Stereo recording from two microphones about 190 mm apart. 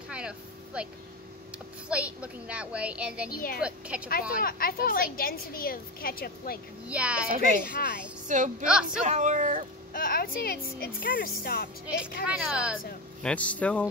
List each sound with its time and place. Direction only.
0.1 s a sound: 5° right (ahead or behind)
1.9 s a child's voice: 5° right (ahead or behind)
3.3 s a woman's voice: 50° left (ahead or behind)
3.6 s a child's voice: 5° right (ahead or behind)
4.4 s a woman's voice: 50° left (ahead or behind)
6.9 s a child's voice: 5° right (ahead or behind)
7.2 s speech: 45° right (ahead or behind)
8.6 s speech: 5° right (ahead or behind)
9.0 s speech: 40° right (ahead or behind)
9.9 s a woman's voice: 50° left (ahead or behind)
12.0 s speech: 5° right (ahead or behind)
13.2 s speech: 5° left (ahead or behind)